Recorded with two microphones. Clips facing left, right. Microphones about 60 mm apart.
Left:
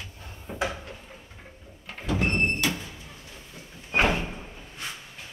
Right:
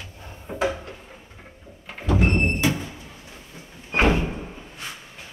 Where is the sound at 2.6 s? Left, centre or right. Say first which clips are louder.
Right 5 dB; right.